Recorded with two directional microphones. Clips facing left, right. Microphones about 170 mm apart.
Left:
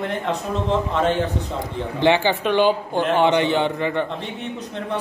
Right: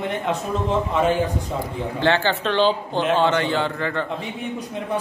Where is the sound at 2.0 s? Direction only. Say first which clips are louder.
Left 3 dB; 15° left (ahead or behind).